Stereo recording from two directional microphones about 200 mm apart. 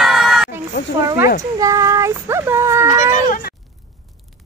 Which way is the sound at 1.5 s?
15° right (ahead or behind).